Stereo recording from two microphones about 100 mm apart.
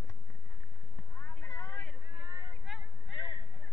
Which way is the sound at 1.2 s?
20° left (ahead or behind).